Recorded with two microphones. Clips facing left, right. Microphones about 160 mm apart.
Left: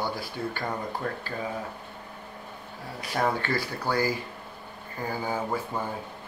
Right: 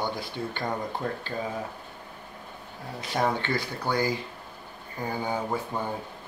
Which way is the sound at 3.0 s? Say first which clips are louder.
Even; 25° right (ahead or behind).